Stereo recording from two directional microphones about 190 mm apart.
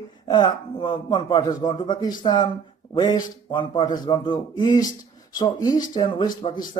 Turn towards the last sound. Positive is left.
turn(degrees=30)  # may be behind; listen again after turning